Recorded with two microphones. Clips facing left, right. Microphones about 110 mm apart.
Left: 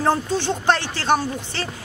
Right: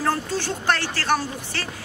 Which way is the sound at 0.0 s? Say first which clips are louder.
Left 4 dB; 20° left (ahead or behind).